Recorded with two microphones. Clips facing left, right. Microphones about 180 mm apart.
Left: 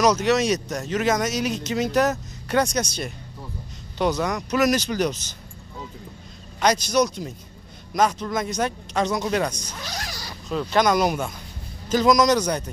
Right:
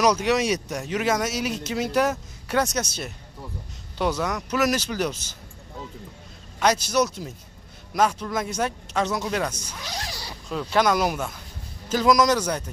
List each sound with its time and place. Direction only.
0.0 s speech: 10° right (ahead or behind)
6.6 s speech: 5° right (ahead or behind)
10.0 s zipper: 25° right (ahead or behind)
10.5 s speech: 5° right (ahead or behind)